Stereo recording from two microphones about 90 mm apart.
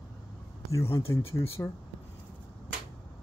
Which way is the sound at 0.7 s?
30° left (ahead or behind).